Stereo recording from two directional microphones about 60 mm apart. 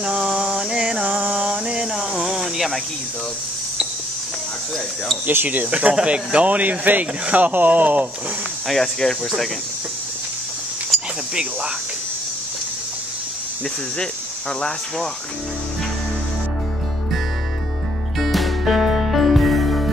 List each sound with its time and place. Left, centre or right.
0.0 s a sound: centre
5.2 s speech: right
8.6 s speech: centre
18.2 s music: centre